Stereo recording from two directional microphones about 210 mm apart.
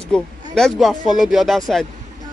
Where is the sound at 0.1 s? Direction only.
5° left (ahead or behind).